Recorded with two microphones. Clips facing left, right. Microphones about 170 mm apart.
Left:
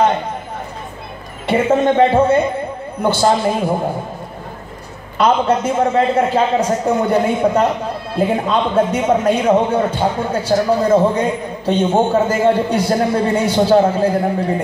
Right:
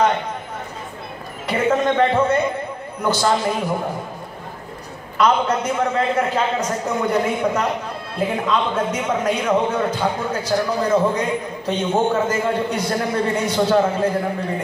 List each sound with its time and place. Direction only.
1.5 s a man's voice: 30° left (ahead or behind)
5.1 s a man's voice: 30° left (ahead or behind)